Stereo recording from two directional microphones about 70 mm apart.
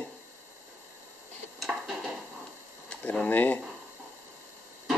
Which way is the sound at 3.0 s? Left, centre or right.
Left.